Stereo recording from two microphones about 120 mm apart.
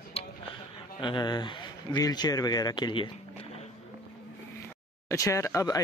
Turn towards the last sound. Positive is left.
turn(degrees=30)  # may be behind; listen again after turning